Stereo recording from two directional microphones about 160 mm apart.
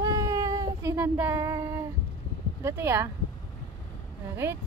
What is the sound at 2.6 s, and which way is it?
Speech, 15° right (ahead or behind).